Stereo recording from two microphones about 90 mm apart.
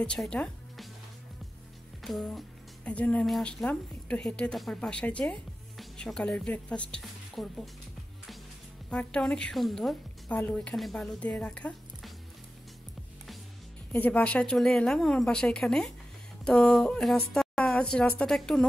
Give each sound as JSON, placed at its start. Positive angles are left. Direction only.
{"t": 0.0, "sound": "a woman's voice", "side_deg": 10}
{"t": 2.0, "sound": "speech", "side_deg": 5}
{"t": 2.8, "sound": "a woman's voice", "side_deg": 15}
{"t": 7.0, "sound": "speech", "side_deg": 0}
{"t": 8.9, "sound": "speech", "side_deg": 10}
{"t": 10.3, "sound": "a woman's voice", "side_deg": 15}
{"t": 10.7, "sound": "a woman's voice", "side_deg": 5}
{"t": 13.9, "sound": "a woman's voice", "side_deg": 20}